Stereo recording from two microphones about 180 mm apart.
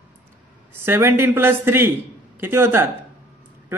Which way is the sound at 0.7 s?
15° right (ahead or behind).